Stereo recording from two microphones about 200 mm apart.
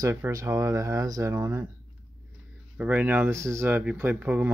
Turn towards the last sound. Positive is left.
turn(degrees=-10)  # may be behind; listen again after turning